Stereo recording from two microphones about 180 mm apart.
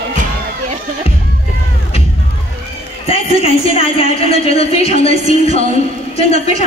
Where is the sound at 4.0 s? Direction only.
35° left (ahead or behind).